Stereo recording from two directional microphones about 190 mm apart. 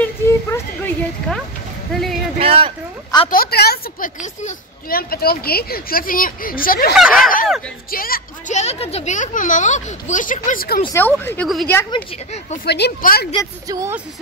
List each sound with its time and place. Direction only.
0.0 s a sound: 10° left (ahead or behind)
1.9 s speech: 5° left (ahead or behind)
2.3 s speech: 30° right (ahead or behind)
3.3 s a woman's voice: 55° left (ahead or behind)
4.2 s speech: 40° left (ahead or behind)
7.0 s speech: centre (ahead or behind)
7.9 s speech: 50° left (ahead or behind)
10.9 s speech: 10° left (ahead or behind)
11.9 s speech: 35° left (ahead or behind)
12.6 s a woman's voice: 60° left (ahead or behind)
13.7 s speech: 15° right (ahead or behind)